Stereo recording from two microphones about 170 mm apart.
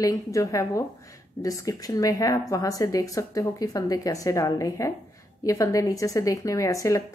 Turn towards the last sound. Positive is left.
turn(degrees=20)  # may be behind; listen again after turning